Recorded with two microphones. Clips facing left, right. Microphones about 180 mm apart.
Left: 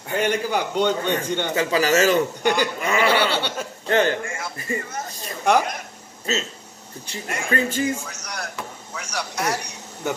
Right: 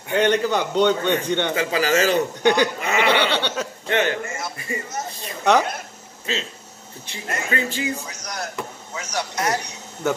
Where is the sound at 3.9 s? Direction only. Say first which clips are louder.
Left 2 dB; 40° left (ahead or behind).